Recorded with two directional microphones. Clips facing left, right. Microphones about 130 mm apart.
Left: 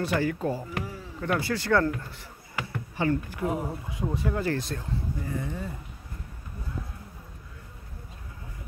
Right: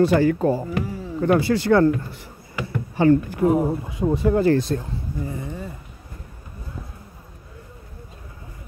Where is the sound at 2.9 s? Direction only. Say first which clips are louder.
Right 10 dB; 35° right (ahead or behind).